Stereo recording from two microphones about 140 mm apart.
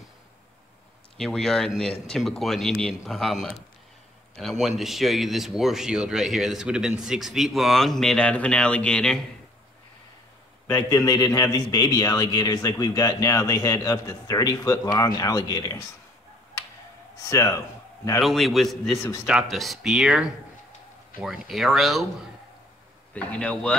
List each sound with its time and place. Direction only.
1.1 s speech: 5° left (ahead or behind)
4.4 s speech: centre (ahead or behind)
11.1 s a man's voice: 25° left (ahead or behind)
17.3 s a man's voice: 20° left (ahead or behind)
18.2 s speech: centre (ahead or behind)
23.1 s speech: 10° left (ahead or behind)